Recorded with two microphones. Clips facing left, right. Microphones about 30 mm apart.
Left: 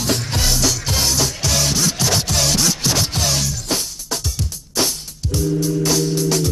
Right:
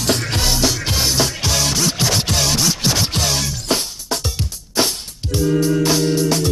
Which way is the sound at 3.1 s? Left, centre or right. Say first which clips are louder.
Right 1 dB; right.